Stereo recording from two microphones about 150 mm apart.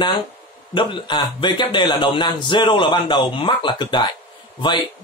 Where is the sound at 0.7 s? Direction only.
30° left (ahead or behind).